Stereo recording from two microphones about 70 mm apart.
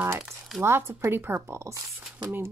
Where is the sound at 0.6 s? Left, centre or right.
Right.